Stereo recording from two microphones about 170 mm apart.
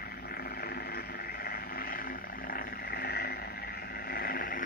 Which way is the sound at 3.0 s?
65° left (ahead or behind).